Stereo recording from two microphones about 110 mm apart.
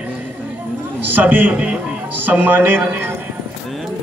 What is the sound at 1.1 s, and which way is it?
A man's voice, 15° right (ahead or behind).